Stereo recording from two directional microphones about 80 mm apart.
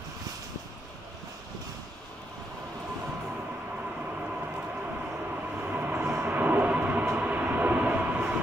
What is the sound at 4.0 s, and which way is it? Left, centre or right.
Train, centre.